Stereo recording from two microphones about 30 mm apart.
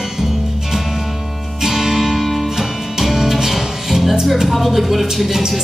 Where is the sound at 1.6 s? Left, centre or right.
Centre.